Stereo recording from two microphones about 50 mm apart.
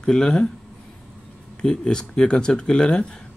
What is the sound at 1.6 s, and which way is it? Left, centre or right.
A man's voice, centre.